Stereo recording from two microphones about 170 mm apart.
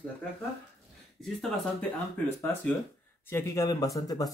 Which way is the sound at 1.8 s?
10° left (ahead or behind).